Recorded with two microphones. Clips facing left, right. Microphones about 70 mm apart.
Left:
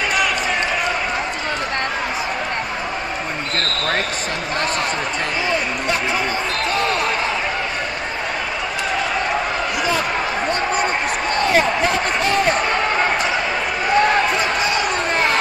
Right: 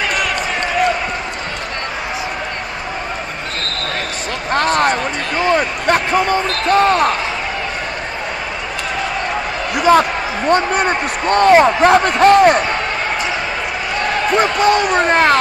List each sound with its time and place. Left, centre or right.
4.5 s a sound: right
5.4 s basketball bounce: right
10.5 s speech: right
14.3 s basketball bounce: right